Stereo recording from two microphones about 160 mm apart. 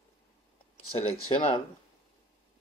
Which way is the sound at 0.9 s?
35° left (ahead or behind).